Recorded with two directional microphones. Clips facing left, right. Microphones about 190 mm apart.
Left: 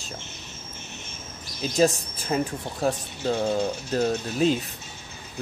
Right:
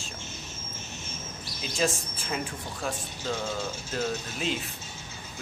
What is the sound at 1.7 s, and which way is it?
Speech, 40° left (ahead or behind).